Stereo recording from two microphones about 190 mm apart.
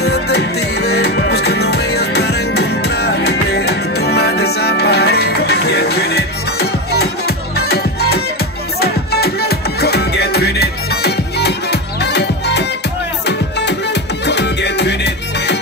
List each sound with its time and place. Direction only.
0.0 s music: 60° left (ahead or behind)